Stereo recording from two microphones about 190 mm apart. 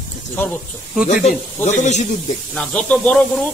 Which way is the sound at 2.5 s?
5° left (ahead or behind).